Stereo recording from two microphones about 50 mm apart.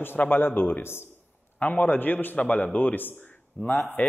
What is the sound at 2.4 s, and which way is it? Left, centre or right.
A man's voice, left.